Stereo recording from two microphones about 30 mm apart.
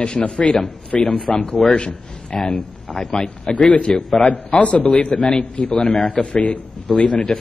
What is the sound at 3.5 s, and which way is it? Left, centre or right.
Speech, left.